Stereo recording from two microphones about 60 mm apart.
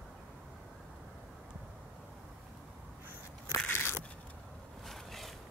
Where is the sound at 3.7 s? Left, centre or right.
Left.